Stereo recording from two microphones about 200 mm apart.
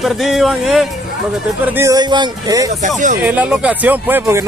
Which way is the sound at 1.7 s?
15° right (ahead or behind).